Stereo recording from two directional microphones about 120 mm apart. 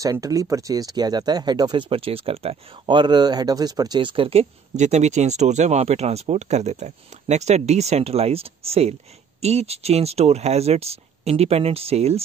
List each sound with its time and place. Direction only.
0.0 s speech: 30° right (ahead or behind); by 12.2 s 60° right (ahead or behind)